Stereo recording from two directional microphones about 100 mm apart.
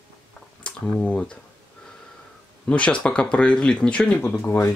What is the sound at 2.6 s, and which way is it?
Speech, 10° left (ahead or behind).